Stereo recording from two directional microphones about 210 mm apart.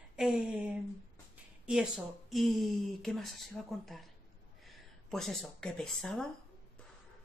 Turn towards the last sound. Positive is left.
turn(degrees=0)  # may be behind; listen again after turning